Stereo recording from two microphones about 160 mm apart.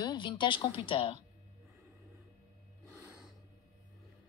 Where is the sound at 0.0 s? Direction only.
25° left (ahead or behind).